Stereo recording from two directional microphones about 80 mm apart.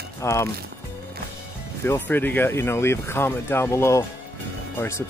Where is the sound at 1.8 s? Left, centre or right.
Left.